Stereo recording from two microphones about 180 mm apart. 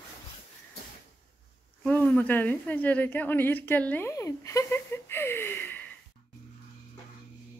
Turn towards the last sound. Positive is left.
turn(degrees=10)  # may be behind; listen again after turning